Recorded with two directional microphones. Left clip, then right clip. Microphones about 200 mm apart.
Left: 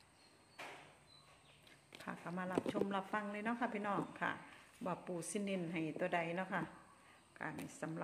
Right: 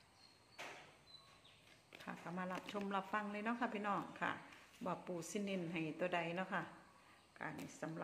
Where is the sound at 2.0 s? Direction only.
10° left (ahead or behind).